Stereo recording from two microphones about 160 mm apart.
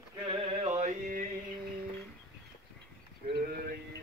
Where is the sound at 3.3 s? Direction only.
70° right (ahead or behind).